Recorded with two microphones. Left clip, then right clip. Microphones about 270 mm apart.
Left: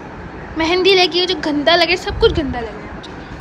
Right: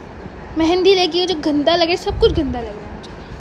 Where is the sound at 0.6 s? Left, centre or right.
Centre.